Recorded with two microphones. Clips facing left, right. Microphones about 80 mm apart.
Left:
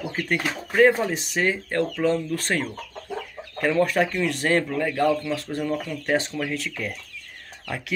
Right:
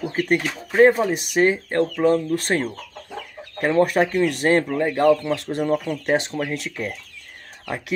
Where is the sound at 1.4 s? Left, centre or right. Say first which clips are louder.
Right 5 dB; right.